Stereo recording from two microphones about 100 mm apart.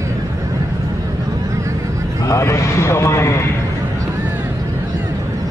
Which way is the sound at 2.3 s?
30° left (ahead or behind).